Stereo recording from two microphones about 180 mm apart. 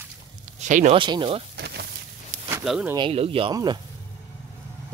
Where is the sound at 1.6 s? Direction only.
65° right (ahead or behind).